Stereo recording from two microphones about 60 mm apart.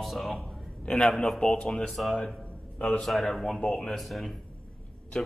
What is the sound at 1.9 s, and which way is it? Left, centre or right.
Speech, centre.